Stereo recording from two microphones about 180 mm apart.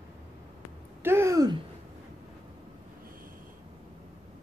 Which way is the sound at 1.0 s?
15° right (ahead or behind).